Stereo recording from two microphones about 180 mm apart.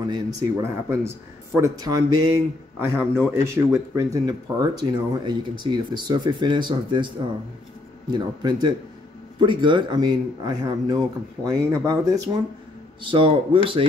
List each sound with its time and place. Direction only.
0.0 s a man's voice: 20° right (ahead or behind)
8.1 s a man's voice: 25° right (ahead or behind)
13.0 s a man's voice: 25° right (ahead or behind)